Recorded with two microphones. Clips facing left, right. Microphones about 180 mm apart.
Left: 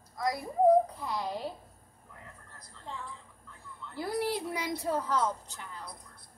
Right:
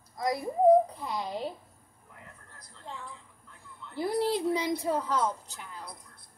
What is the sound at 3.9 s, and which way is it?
Speech, 25° right (ahead or behind).